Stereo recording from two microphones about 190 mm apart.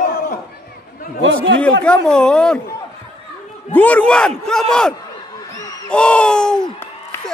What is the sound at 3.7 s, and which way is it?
Speech, 10° left (ahead or behind).